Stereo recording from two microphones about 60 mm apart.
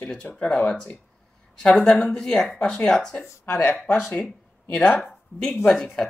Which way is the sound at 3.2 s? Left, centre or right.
Left.